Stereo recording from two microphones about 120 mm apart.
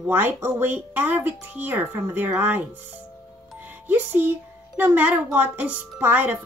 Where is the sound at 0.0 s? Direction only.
15° right (ahead or behind).